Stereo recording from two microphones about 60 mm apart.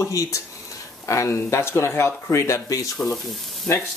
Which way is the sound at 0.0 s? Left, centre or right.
Left.